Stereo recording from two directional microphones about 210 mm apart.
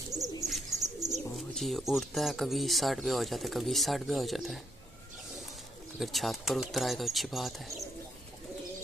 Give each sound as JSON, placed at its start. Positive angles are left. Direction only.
{"t": 0.1, "sound": "bird", "side_deg": -15}
{"t": 0.5, "sound": "bird", "side_deg": 0}
{"t": 1.1, "sound": "speech", "side_deg": 0}
{"t": 5.9, "sound": "speech", "side_deg": 0}